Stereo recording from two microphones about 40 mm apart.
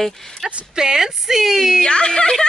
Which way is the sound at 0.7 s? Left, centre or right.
Centre.